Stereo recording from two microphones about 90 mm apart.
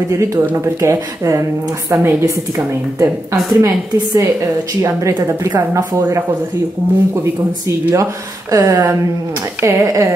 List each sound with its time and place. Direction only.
0.1 s a woman's voice: 35° right (ahead or behind)
7.6 s a woman's voice: 35° right (ahead or behind)